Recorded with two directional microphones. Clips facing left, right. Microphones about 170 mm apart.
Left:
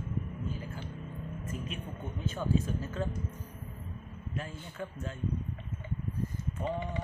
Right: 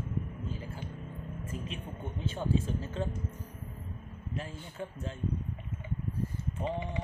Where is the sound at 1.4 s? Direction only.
30° right (ahead or behind).